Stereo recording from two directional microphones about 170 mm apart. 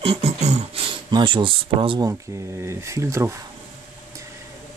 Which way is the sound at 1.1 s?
30° right (ahead or behind).